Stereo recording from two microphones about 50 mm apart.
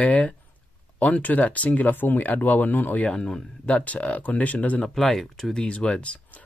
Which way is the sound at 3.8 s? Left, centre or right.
Left.